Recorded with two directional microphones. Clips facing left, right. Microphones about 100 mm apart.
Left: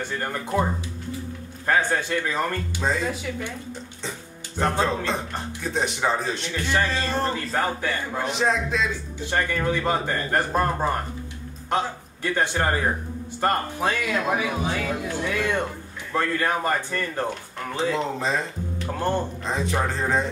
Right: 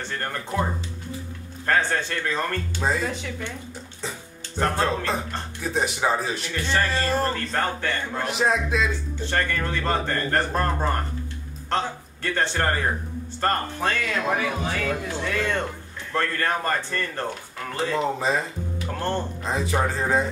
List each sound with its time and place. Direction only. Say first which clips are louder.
0.0 s speech: left 2 dB; 10° left (ahead or behind)
1.7 s speech: left 1 dB; 10° left (ahead or behind)
2.8 s a man's voice: even; centre (ahead or behind)
4.6 s a man's voice: even; centre (ahead or behind)
9.2 s speech: left 2 dB; 10° left (ahead or behind)
17.3 s a man's voice: left 2 dB; centre (ahead or behind)
18.9 s speech: left 2 dB; 10° left (ahead or behind)
19.4 s a man's voice: right 1 dB; 5° right (ahead or behind)